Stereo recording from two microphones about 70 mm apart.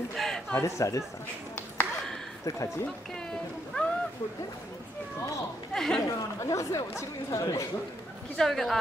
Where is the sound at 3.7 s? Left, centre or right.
Centre.